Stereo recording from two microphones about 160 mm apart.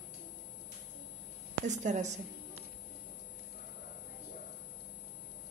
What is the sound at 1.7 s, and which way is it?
Speech, 45° right (ahead or behind).